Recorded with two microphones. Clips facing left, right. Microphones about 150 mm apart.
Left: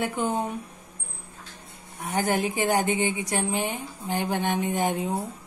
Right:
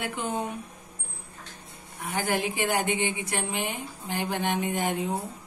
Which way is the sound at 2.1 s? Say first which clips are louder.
Left 3 dB; 40° left (ahead or behind).